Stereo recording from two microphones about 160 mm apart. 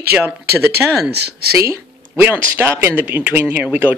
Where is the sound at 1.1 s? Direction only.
90° right.